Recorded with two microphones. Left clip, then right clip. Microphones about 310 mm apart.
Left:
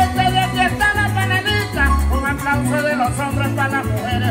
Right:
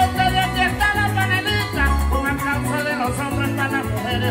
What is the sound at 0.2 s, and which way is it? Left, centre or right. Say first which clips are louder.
Music: left 2 dB; centre.